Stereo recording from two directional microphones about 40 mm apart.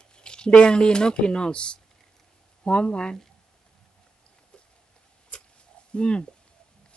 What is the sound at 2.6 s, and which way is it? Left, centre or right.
Speech, left.